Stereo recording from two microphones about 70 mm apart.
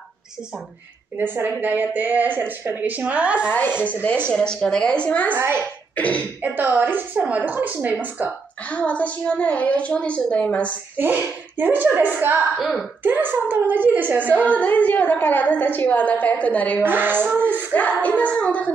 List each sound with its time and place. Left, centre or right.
1.1 s speech: right
3.4 s a woman's voice: left
4.3 s a woman's voice: centre
5.3 s a child's voice: right
5.9 s cough: left
6.4 s speech: right
8.6 s a woman's voice: left
11.0 s speech: right
12.5 s speech: centre
13.0 s speech: right
14.2 s a woman's voice: left
16.8 s speech: right
17.3 s child singing: right
17.7 s a woman's voice: left